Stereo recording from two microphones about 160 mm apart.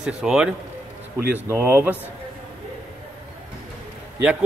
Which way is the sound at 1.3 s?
15° right (ahead or behind).